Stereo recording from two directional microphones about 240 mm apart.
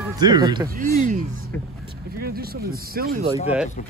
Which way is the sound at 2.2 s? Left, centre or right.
Right.